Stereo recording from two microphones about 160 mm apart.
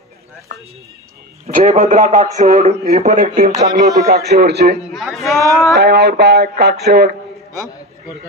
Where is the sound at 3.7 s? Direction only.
75° right (ahead or behind); by 4.7 s 90° right.